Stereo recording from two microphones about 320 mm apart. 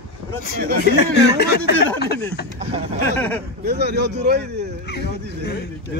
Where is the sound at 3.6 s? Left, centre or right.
Right.